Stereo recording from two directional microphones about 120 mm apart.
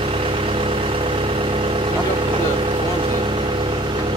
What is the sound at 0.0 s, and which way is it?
Vehicle, 50° right (ahead or behind).